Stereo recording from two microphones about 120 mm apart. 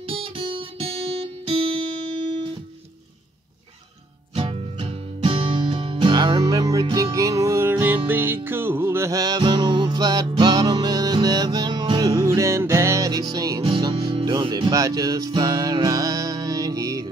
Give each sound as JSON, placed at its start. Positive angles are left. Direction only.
{"t": 0.0, "sound": "music", "side_deg": -50}
{"t": 4.3, "sound": "music", "side_deg": -50}